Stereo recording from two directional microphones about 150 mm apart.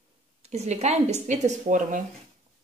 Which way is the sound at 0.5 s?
45° right (ahead or behind).